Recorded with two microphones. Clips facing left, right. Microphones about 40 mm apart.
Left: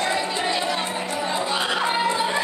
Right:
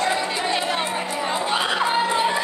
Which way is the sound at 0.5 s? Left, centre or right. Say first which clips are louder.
Right 1 dB; right.